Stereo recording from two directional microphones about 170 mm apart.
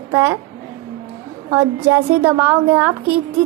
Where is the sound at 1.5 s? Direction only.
15° right (ahead or behind).